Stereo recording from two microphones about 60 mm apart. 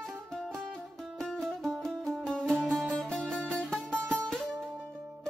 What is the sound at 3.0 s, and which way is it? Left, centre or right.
Music, centre.